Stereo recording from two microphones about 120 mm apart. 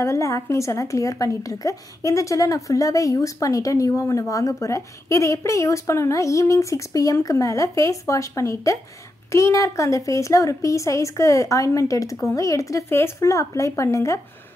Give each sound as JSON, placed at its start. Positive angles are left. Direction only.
{"t": 0.0, "sound": "a woman's voice", "side_deg": 25}